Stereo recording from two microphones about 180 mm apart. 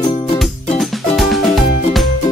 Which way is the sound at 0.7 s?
Centre (ahead or behind).